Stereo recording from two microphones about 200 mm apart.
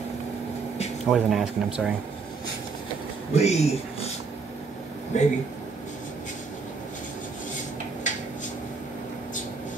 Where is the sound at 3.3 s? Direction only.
30° left (ahead or behind).